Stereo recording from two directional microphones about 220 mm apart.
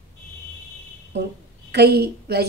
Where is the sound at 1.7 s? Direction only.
45° right (ahead or behind).